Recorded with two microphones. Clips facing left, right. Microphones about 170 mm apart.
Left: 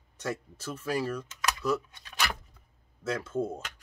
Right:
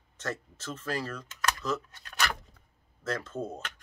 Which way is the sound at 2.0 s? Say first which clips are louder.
Right 1 dB; centre (ahead or behind).